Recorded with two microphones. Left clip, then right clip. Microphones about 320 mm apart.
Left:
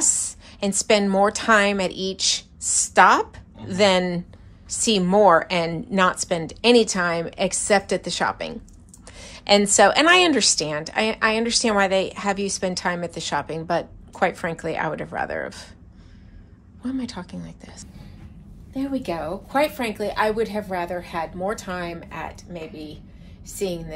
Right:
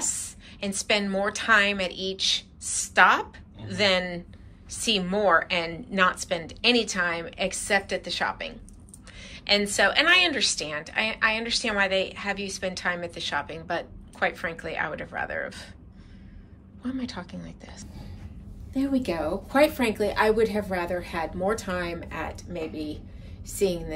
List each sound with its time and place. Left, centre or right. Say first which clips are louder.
0.0 s a woman's voice: left 8 dB; left
16.8 s a woman's voice: left 4 dB; centre
18.7 s a woman's voice: even; centre